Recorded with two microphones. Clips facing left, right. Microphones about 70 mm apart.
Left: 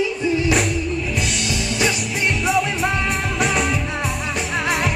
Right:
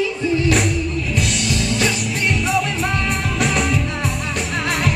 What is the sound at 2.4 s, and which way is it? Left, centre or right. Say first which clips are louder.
Music: left 1 dB; centre.